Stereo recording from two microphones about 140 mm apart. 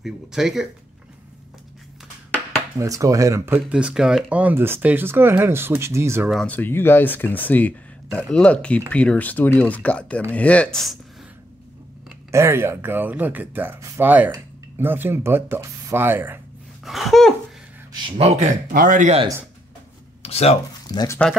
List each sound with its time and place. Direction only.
0.0 s speech: 5° right (ahead or behind)
2.8 s speech: 25° right (ahead or behind)
6.3 s speech: 10° left (ahead or behind)
12.3 s speech: 20° right (ahead or behind)
16.8 s a sound: centre (ahead or behind)
18.1 s speech: 50° right (ahead or behind)
18.7 s speech: 75° right (ahead or behind)
20.2 s a sound: 45° left (ahead or behind)
20.8 s speech: 30° left (ahead or behind)